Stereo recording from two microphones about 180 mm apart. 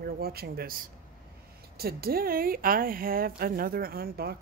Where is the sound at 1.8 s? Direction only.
60° right (ahead or behind).